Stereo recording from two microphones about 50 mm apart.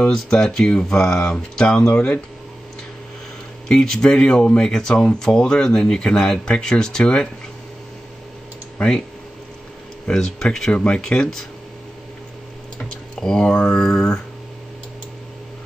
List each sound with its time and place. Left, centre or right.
0.1 s speech: centre
3.6 s speech: centre
10.0 s speech: centre
13.2 s speech: centre